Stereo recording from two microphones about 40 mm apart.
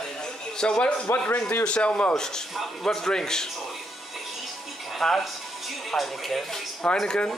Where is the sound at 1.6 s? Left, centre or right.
Left.